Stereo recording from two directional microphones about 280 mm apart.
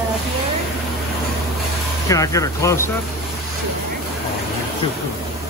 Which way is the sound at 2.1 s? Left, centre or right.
Centre.